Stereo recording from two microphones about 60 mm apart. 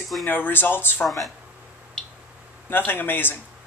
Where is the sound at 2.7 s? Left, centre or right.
Left.